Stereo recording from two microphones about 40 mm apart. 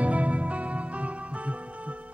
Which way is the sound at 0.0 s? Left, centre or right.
Right.